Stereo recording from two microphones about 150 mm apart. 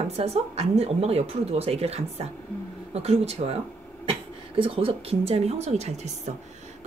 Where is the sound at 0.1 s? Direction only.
45° right (ahead or behind).